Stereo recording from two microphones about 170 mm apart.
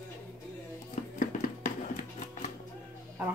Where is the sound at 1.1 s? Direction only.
55° left (ahead or behind).